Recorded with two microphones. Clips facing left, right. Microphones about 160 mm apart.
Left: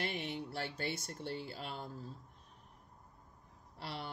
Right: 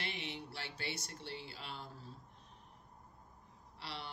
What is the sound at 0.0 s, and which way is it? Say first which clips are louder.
Speech: left 5 dB; 45° left (ahead or behind).